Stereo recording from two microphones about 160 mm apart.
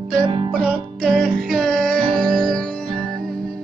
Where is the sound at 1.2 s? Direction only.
65° right (ahead or behind).